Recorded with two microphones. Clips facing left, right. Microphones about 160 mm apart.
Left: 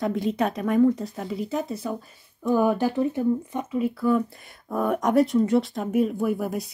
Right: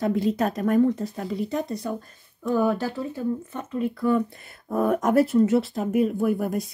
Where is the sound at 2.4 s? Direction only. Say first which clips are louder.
Left 2 dB; 15° left (ahead or behind).